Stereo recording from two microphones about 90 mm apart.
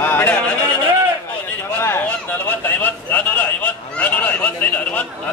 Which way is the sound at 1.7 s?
25° left (ahead or behind).